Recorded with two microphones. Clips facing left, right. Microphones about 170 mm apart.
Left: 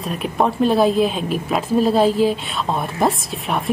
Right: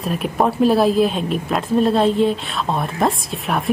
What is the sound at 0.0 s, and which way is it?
A woman's voice, centre (ahead or behind).